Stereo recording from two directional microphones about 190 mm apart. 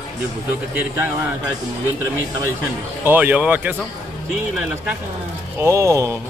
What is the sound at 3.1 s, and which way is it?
Speech, 10° right (ahead or behind).